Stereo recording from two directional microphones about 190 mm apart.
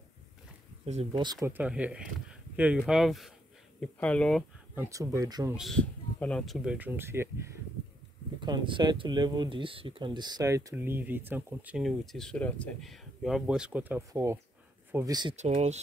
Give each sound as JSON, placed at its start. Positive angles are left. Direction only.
{"t": 0.8, "sound": "speech", "side_deg": -35}
{"t": 1.2, "sound": "speech", "side_deg": -20}
{"t": 4.7, "sound": "speech", "side_deg": -15}
{"t": 5.6, "sound": "speech", "side_deg": 5}
{"t": 8.4, "sound": "speech", "side_deg": -25}
{"t": 15.3, "sound": "speech", "side_deg": -35}